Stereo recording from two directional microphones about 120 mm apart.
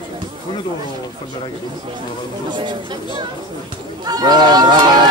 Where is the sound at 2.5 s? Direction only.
40° right (ahead or behind).